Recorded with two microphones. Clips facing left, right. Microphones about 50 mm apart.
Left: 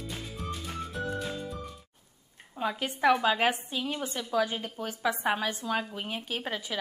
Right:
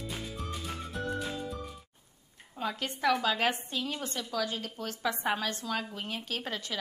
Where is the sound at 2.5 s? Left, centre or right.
Centre.